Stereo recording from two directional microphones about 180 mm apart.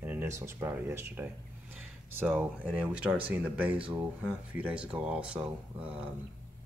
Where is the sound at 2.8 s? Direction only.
5° right (ahead or behind).